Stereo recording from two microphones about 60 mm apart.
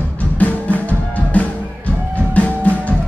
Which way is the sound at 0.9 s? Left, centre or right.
Left.